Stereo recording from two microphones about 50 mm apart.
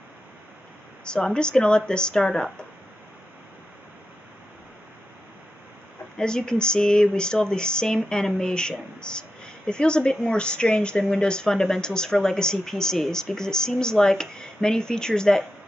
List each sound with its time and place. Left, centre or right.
1.0 s a woman's voice: centre
6.1 s a woman's voice: centre